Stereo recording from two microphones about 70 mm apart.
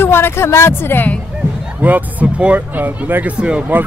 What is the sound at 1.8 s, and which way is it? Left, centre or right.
Speech, right.